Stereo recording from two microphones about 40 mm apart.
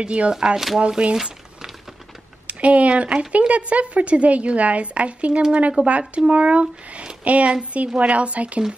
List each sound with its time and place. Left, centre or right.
0.0 s speech: right
1.1 s crumpling: centre
2.4 s a woman's voice: right